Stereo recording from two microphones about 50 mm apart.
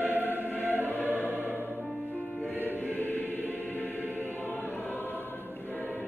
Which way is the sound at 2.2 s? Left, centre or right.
Centre.